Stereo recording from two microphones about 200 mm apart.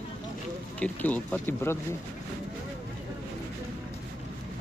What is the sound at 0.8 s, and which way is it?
Speech, 5° left (ahead or behind).